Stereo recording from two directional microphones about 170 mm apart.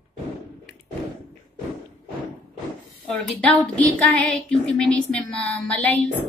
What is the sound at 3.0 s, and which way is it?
A woman's voice, 5° left (ahead or behind).